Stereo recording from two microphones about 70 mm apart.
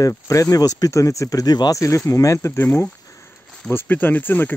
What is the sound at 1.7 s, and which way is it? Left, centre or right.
Speech, left.